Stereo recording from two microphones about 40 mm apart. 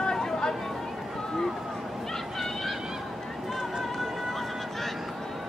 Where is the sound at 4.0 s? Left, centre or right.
Centre.